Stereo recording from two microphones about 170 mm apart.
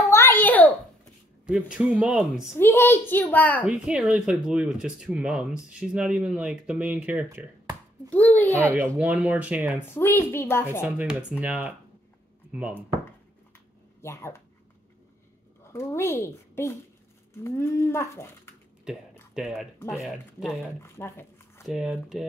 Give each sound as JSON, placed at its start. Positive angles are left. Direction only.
{"t": 0.1, "sound": "a sound", "side_deg": 15}
{"t": 1.4, "sound": "speech", "side_deg": -5}
{"t": 2.6, "sound": "speech", "side_deg": 15}
{"t": 3.6, "sound": "speech", "side_deg": -5}
{"t": 8.1, "sound": "speech", "side_deg": 10}
{"t": 8.9, "sound": "speech", "side_deg": -10}
{"t": 9.8, "sound": "speech", "side_deg": 15}
{"t": 10.8, "sound": "speech", "side_deg": -5}
{"t": 15.6, "sound": "a woman's voice", "side_deg": 15}
{"t": 19.3, "sound": "speech", "side_deg": -5}
{"t": 20.8, "sound": "speech", "side_deg": 15}
{"t": 21.6, "sound": "speech", "side_deg": 0}